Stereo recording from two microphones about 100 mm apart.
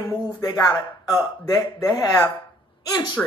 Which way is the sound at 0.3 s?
40° left (ahead or behind).